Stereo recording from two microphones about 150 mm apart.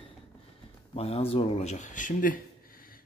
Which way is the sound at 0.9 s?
40° left (ahead or behind).